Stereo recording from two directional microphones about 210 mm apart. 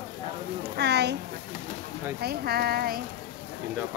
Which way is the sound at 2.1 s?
50° right (ahead or behind).